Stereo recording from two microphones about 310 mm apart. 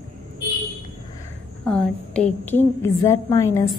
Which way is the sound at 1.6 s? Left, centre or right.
Centre.